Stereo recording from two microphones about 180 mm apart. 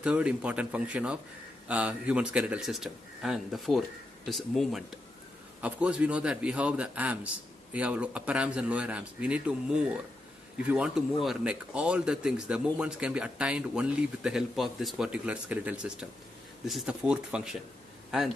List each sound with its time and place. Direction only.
0.0 s a man's voice: 5° right (ahead or behind)